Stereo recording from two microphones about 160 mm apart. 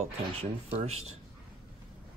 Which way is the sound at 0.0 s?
45° right (ahead or behind).